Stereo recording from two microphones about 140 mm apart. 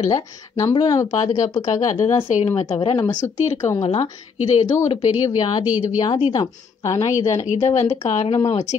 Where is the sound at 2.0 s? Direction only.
20° left (ahead or behind).